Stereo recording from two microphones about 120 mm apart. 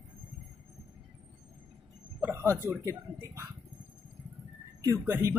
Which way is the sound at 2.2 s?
20° right (ahead or behind).